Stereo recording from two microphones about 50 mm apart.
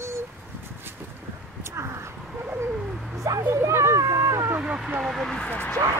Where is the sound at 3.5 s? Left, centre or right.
Right.